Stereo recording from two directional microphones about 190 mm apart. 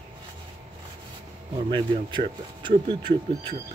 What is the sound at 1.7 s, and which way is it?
Speech, 25° right (ahead or behind).